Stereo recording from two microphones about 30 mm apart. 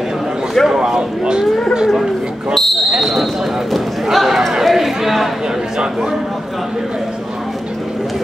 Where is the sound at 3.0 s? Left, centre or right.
Centre.